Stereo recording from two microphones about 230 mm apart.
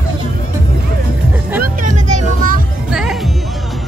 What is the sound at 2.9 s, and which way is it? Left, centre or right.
Music, centre.